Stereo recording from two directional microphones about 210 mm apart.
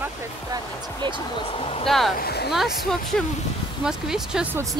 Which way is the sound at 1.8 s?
Centre (ahead or behind).